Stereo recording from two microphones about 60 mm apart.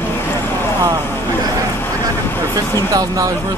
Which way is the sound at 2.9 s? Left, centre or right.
Right.